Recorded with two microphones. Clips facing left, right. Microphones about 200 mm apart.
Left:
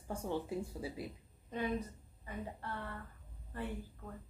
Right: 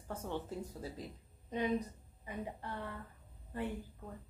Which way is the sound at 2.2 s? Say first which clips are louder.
Right 1 dB; 15° right (ahead or behind).